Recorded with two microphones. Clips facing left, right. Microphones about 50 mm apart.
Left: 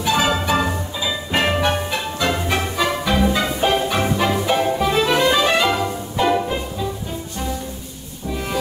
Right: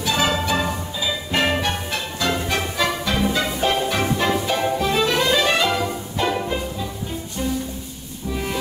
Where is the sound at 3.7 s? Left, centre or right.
Centre.